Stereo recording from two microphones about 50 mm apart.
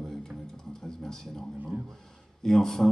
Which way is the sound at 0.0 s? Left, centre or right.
Centre.